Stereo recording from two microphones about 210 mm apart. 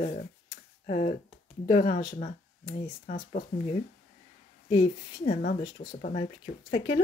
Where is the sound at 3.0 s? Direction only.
40° left (ahead or behind).